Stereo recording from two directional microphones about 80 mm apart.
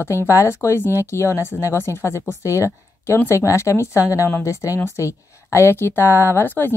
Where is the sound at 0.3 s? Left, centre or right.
Left.